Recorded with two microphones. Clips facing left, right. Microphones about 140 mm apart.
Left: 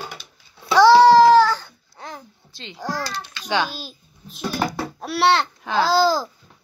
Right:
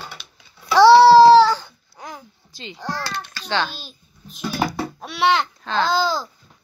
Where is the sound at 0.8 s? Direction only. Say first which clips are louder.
Right 2 dB; 15° left (ahead or behind).